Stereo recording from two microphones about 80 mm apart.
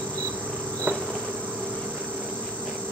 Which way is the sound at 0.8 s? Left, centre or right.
Centre.